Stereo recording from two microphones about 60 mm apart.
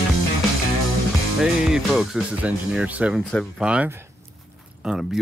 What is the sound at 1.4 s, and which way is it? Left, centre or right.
Music, centre.